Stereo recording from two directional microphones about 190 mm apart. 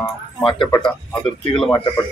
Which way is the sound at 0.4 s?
25° left (ahead or behind).